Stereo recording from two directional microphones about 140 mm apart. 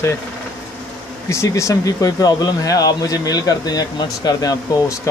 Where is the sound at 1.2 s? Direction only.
20° left (ahead or behind).